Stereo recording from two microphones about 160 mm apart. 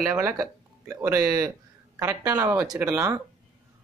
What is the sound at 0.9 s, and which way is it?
Speech, 15° right (ahead or behind).